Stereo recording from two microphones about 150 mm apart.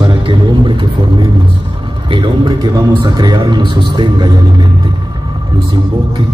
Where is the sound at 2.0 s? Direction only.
30° right (ahead or behind).